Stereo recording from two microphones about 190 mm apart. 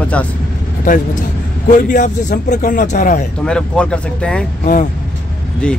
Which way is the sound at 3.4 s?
5° left (ahead or behind).